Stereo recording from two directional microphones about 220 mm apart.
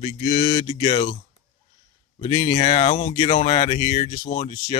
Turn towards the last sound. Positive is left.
turn(degrees=25)  # may be behind; listen again after turning